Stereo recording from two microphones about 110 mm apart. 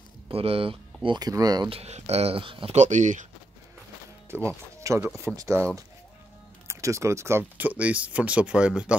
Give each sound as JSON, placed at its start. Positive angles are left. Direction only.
{"t": 0.3, "sound": "speech", "side_deg": -60}
{"t": 1.0, "sound": "speech", "side_deg": -40}
{"t": 1.7, "sound": "speech", "side_deg": -75}
{"t": 2.7, "sound": "speech", "side_deg": -90}
{"t": 4.3, "sound": "speech", "side_deg": -25}
{"t": 6.7, "sound": "speech", "side_deg": -25}